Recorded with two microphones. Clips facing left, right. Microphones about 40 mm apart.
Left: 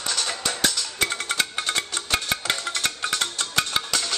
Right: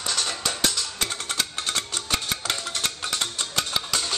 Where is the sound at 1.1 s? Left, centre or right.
Centre.